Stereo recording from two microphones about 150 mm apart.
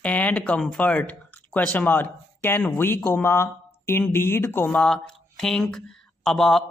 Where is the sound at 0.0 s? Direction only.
10° left (ahead or behind).